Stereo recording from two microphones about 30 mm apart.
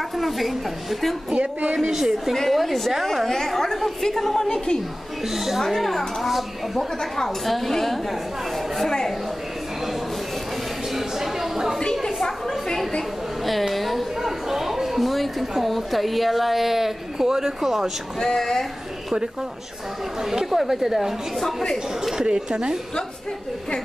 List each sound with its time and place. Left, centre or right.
0.2 s a woman's voice: centre
1.9 s speech: right
2.3 s a woman's voice: centre
4.4 s a woman's voice: left
5.3 s speech: centre
5.6 s a woman's voice: centre
11.0 s a sound: centre
12.3 s a sound: centre
13.5 s a sound: centre
17.6 s a woman's voice: centre
18.2 s a woman's voice: centre
20.2 s speech: centre
21.4 s a woman's voice: centre
22.1 s speech: right